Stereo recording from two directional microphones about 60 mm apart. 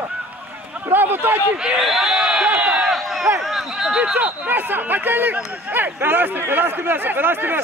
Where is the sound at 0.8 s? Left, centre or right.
Right.